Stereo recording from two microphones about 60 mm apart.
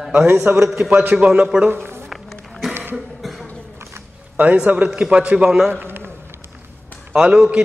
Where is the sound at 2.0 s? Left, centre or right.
Centre.